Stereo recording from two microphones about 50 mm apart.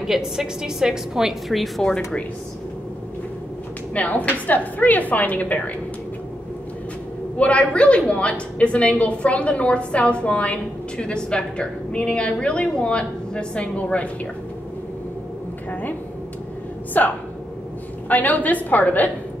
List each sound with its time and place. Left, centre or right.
0.0 s a woman's voice: centre
3.9 s a woman's voice: left
7.3 s a woman's voice: left
17.0 s a woman's voice: left